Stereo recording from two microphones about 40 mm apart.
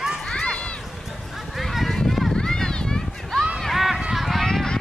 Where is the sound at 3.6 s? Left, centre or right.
Centre.